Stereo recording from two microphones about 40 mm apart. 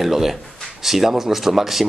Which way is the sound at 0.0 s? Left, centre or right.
Centre.